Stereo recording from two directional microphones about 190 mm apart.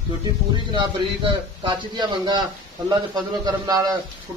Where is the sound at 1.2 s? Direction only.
25° right (ahead or behind).